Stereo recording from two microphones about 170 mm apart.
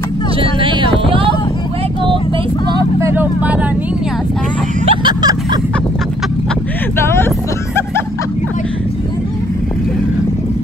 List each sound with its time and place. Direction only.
0.4 s vehicle: 30° right (ahead or behind)
3.2 s vehicle: 10° right (ahead or behind)
4.8 s a sound: 25° right (ahead or behind)
7.1 s vehicle: 15° left (ahead or behind)